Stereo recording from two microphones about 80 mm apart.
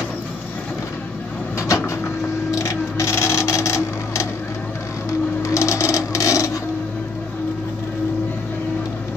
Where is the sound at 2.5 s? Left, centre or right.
Left.